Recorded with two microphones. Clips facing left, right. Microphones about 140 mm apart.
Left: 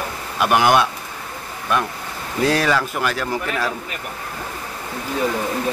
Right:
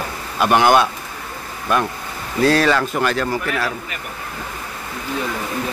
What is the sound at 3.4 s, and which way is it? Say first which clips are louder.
Speech: right 1 dB; 15° left (ahead or behind).